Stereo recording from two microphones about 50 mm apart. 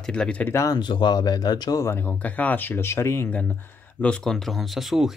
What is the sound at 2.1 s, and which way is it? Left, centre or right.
Speech, left.